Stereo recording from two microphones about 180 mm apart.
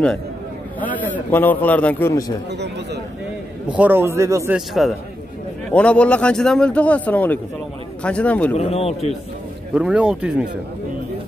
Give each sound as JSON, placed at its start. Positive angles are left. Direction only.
{"t": 0.7, "sound": "a man's voice", "side_deg": 10}
{"t": 2.5, "sound": "speech", "side_deg": -70}
{"t": 3.6, "sound": "speech", "side_deg": -5}
{"t": 4.6, "sound": "a man's voice", "side_deg": 0}
{"t": 8.5, "sound": "speech", "side_deg": 35}
{"t": 9.8, "sound": "speech", "side_deg": -5}